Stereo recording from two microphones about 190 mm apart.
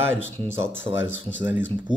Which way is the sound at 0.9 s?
75° left (ahead or behind).